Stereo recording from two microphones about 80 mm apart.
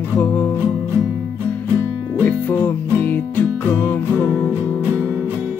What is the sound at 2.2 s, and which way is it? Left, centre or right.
Music, left.